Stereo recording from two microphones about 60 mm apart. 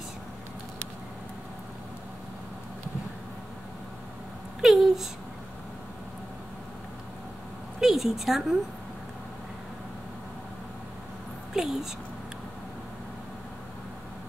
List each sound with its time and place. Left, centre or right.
4.6 s a sound: centre
7.8 s a woman's voice: centre
11.5 s speech: centre